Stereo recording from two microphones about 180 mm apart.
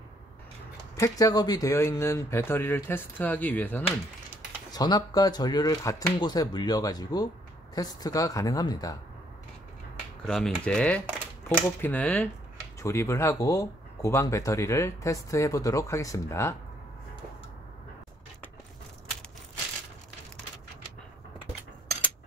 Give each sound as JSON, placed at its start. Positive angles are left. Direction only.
{"t": 0.9, "sound": "speech", "side_deg": 20}
{"t": 4.6, "sound": "speech", "side_deg": 20}
{"t": 10.2, "sound": "mechanisms", "side_deg": 0}
{"t": 11.4, "sound": "speech", "side_deg": 10}